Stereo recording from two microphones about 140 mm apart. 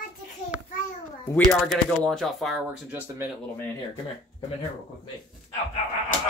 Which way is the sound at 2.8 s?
15° right (ahead or behind).